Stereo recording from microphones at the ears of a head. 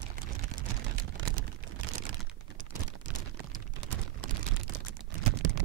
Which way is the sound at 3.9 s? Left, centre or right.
Right.